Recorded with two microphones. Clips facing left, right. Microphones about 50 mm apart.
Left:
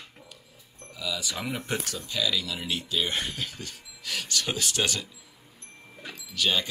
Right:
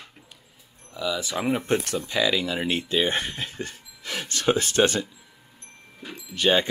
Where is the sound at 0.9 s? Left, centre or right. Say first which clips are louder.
Right 5 dB; right.